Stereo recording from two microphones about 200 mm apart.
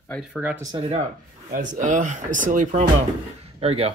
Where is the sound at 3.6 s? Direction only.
30° right (ahead or behind).